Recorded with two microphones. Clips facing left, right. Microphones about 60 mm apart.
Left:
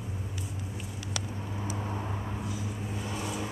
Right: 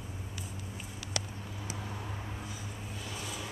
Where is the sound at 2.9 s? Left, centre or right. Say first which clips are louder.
Left 6 dB; left.